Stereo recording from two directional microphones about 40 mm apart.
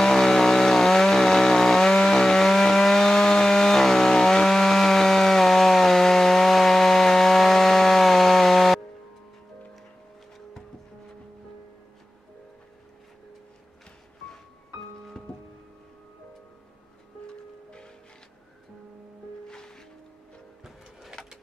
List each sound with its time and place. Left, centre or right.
0.0 s chainsaw: centre
15.2 s music: centre
17.3 s music: left
19.4 s music: centre
20.6 s bird: centre